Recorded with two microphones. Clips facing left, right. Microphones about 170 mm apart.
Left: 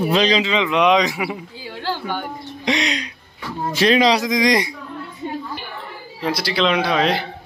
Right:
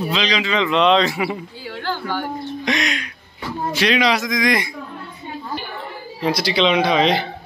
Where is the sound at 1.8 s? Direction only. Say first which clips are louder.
Even; 20° left (ahead or behind).